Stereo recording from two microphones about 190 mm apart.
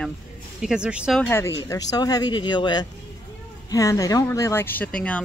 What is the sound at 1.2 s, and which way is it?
Speech, 15° left (ahead or behind).